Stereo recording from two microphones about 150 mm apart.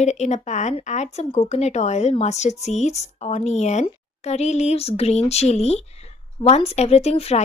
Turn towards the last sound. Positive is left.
turn(degrees=45)  # may be behind; listen again after turning